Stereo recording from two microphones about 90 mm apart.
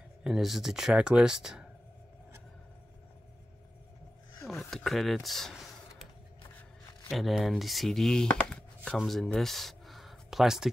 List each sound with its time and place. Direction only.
0.2 s speech: centre (ahead or behind)
4.6 s speech: 5° left (ahead or behind)
7.1 s speech: centre (ahead or behind)